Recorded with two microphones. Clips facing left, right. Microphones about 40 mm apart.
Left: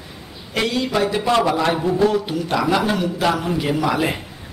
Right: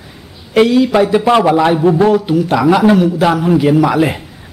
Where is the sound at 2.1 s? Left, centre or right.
Centre.